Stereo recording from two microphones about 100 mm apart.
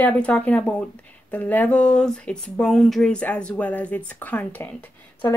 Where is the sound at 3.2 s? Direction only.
15° left (ahead or behind).